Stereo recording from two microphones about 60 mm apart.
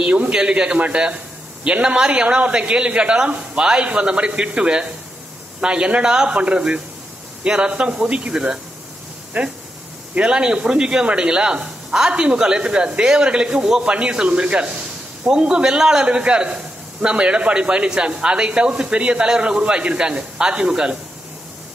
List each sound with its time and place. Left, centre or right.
0.0 s speech: right